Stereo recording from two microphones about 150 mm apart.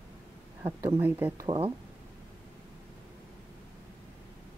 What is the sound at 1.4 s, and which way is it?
Speech, 30° right (ahead or behind).